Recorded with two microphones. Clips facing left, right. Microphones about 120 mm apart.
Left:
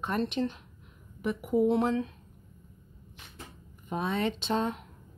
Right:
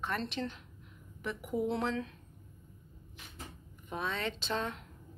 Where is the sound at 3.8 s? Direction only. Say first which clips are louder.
Left 6 dB; 20° left (ahead or behind).